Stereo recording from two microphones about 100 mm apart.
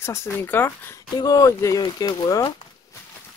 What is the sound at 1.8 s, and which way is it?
Speech, 50° left (ahead or behind).